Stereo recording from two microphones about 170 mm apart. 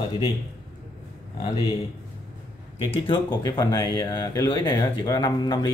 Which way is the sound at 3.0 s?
25° left (ahead or behind).